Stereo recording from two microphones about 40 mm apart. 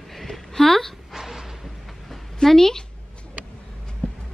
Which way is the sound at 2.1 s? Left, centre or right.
Centre.